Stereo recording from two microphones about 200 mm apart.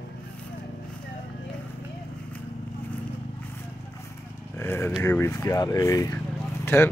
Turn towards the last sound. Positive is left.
turn(degrees=15)  # may be behind; listen again after turning